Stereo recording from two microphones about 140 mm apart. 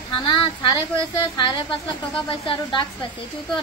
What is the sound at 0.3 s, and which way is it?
Speech, 35° left (ahead or behind).